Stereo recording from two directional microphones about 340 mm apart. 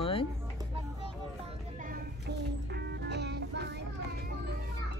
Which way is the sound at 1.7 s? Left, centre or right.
Right.